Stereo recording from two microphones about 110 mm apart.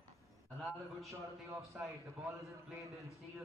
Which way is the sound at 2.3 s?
30° right (ahead or behind).